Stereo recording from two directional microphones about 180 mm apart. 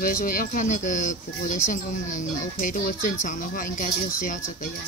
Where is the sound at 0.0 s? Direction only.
50° left (ahead or behind).